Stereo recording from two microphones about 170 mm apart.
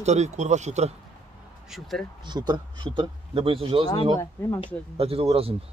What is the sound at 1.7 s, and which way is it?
Speech, centre (ahead or behind).